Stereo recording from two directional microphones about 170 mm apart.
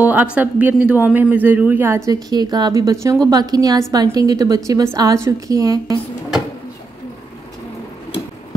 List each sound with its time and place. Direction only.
0.0 s a woman's voice: 10° right (ahead or behind)